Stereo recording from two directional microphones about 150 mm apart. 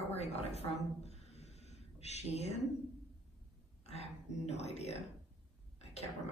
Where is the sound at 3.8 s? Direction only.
45° left (ahead or behind).